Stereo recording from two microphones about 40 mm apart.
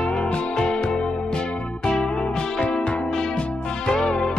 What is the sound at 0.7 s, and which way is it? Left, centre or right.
Music, left.